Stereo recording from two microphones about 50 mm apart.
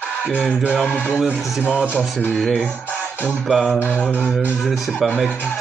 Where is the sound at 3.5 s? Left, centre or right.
Centre.